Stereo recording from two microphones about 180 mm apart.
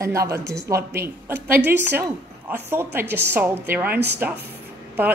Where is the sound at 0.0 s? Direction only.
15° right (ahead or behind).